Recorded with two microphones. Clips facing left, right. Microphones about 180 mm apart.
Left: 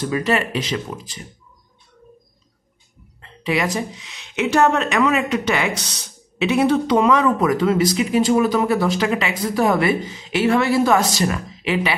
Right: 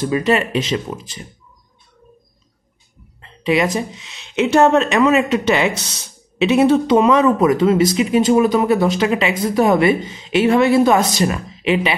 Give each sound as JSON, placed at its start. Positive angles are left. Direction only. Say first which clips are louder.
{"t": 0.0, "sound": "speech", "louder": "right 3 dB", "side_deg": -20}
{"t": 3.2, "sound": "speech", "louder": "right 5 dB", "side_deg": -20}